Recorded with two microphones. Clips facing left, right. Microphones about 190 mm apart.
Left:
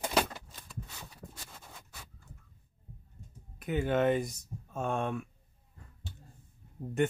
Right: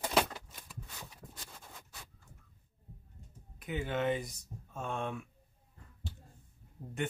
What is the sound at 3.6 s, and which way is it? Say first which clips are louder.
Speech: left 6 dB; 50° left (ahead or behind).